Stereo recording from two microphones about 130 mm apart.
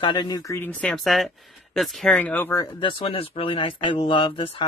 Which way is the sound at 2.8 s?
40° left (ahead or behind).